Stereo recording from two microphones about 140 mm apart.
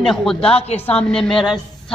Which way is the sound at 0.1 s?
5° left (ahead or behind).